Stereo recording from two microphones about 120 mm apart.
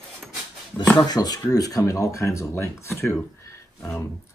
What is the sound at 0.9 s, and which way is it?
Speech, 35° left (ahead or behind).